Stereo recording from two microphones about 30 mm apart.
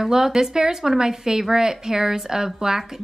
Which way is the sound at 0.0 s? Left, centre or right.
Centre.